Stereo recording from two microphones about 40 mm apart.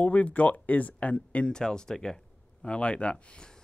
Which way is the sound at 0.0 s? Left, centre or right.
Left.